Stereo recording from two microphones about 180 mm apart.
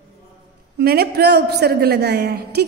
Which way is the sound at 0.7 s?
60° right (ahead or behind).